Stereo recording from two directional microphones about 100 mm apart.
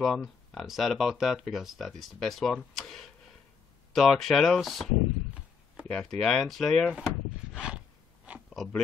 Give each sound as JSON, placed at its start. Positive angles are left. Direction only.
{"t": 0.0, "sound": "speech", "side_deg": 5}
{"t": 5.9, "sound": "speech", "side_deg": 5}
{"t": 7.5, "sound": "a sound", "side_deg": -10}
{"t": 8.5, "sound": "speech", "side_deg": 5}